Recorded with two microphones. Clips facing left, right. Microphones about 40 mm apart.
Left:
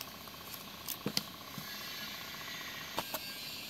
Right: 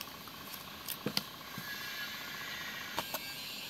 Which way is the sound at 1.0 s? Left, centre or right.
Centre.